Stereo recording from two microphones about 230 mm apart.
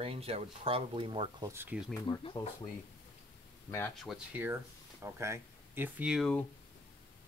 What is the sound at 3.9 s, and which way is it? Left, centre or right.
Speech, centre.